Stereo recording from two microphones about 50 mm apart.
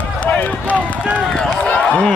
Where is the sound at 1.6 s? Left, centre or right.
Left.